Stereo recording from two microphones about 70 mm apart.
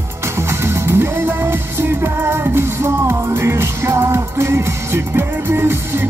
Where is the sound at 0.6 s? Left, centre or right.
Right.